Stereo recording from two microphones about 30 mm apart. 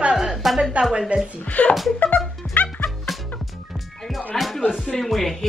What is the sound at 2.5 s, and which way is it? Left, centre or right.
Music, left.